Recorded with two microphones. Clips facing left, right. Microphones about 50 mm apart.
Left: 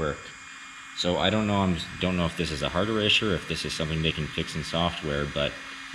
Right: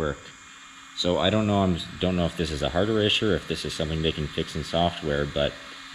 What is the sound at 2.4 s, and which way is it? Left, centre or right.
Speech, left.